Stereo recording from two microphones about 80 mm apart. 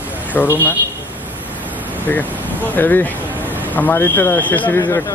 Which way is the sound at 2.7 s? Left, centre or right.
Left.